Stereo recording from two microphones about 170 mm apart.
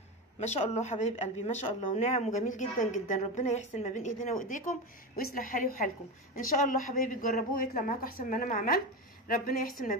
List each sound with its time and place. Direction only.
0.4 s speech: 40° left (ahead or behind)